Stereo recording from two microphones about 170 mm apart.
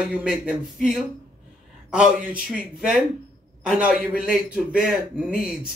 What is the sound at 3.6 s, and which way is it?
A man's voice, 5° right (ahead or behind).